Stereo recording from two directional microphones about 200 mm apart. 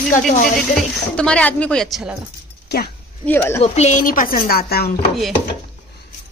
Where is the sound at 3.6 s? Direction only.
35° left (ahead or behind); by 5.0 s 50° left (ahead or behind).